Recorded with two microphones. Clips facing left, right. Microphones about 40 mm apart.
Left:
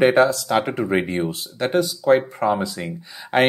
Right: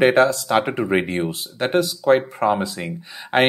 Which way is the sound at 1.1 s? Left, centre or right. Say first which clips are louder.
Even; centre.